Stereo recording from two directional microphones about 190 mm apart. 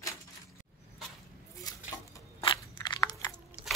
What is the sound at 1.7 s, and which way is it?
Crunch, 25° left (ahead or behind).